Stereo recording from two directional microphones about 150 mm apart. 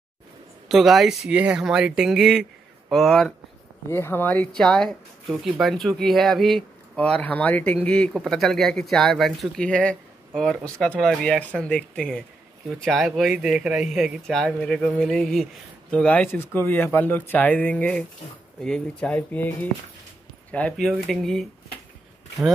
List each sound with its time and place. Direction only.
0.7 s speech: centre (ahead or behind)
3.9 s speech: 15° left (ahead or behind)